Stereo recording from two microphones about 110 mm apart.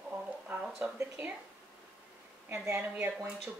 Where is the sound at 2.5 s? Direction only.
20° right (ahead or behind).